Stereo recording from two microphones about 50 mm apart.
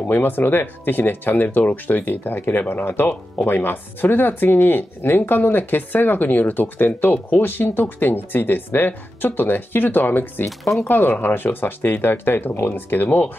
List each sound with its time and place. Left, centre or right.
0.0 s speech: left